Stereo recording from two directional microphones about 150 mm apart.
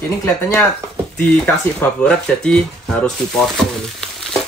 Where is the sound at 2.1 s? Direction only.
5° left (ahead or behind).